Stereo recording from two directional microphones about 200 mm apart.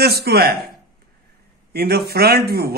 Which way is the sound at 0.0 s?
50° right (ahead or behind).